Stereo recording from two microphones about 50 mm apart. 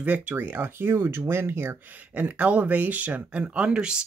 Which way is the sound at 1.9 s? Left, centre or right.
Right.